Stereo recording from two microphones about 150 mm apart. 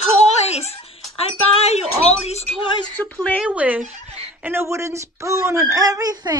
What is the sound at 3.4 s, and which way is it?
Speech, 10° right (ahead or behind).